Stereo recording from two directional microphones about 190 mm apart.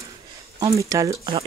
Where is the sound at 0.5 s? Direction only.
20° right (ahead or behind).